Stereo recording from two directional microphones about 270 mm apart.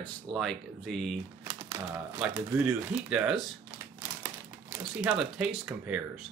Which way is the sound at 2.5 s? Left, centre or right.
Centre.